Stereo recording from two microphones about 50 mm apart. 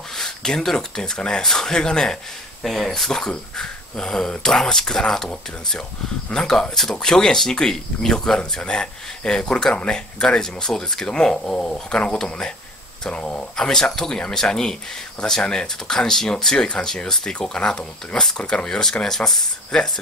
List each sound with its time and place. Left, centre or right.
0.1 s speech: centre